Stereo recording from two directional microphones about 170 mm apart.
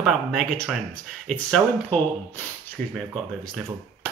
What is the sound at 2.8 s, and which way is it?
Speech, 50° right (ahead or behind).